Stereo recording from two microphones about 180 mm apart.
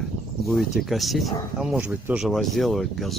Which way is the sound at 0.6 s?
Centre (ahead or behind).